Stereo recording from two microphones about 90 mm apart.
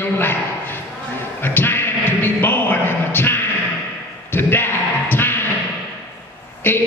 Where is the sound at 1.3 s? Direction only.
25° left (ahead or behind).